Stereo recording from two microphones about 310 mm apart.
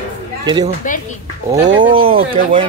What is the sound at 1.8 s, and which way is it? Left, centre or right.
Speech, centre.